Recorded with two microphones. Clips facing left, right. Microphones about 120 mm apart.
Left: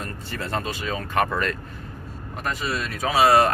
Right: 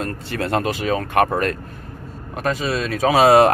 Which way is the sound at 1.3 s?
50° right (ahead or behind).